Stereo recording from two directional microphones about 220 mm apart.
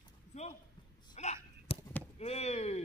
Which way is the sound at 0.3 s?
30° left (ahead or behind).